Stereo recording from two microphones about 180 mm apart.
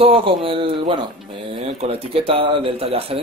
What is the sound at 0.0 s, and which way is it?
A man's voice, 30° right (ahead or behind).